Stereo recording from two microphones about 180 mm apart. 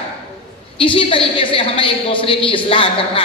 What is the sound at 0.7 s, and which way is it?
A woman's voice, 30° left (ahead or behind).